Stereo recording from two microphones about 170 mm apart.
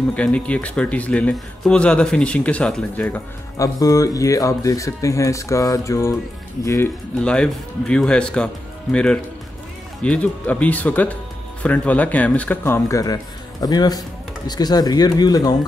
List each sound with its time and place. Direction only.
0.1 s speech: 5° left (ahead or behind)
7.2 s speech: 5° left (ahead or behind); by 15.5 s 25° left (ahead or behind)